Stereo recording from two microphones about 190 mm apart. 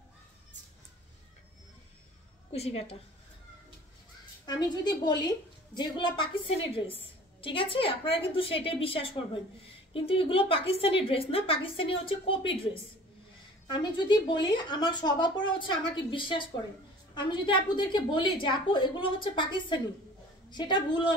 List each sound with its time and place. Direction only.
2.5 s a woman's voice: 35° left (ahead or behind)
4.5 s speech: 20° left (ahead or behind)
13.7 s speech: 25° left (ahead or behind)